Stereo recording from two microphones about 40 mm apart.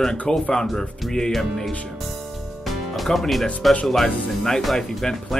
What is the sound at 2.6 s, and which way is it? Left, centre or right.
Music, centre.